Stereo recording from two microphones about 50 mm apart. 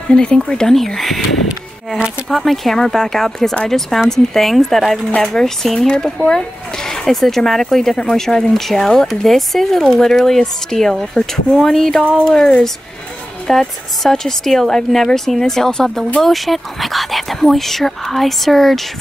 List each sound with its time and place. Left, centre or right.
0.1 s speech: centre
2.2 s speech: centre